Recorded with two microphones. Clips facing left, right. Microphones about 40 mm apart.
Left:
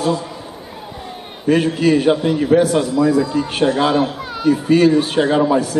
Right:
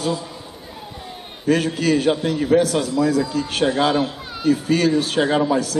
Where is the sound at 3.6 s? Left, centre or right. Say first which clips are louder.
Left 3 dB; centre.